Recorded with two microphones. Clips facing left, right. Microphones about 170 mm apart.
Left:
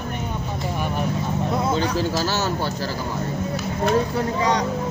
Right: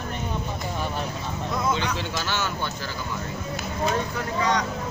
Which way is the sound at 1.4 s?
35° left (ahead or behind).